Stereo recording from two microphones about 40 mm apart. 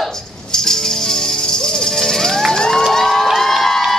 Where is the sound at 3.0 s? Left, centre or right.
Centre.